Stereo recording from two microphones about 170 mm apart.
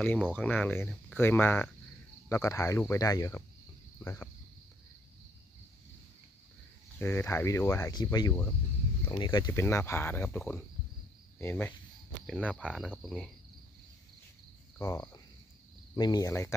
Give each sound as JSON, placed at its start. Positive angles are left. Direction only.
{"t": 0.3, "sound": "speech", "side_deg": 10}
{"t": 7.0, "sound": "speech", "side_deg": 15}
{"t": 12.5, "sound": "cricket", "side_deg": -5}
{"t": 14.8, "sound": "speech", "side_deg": 20}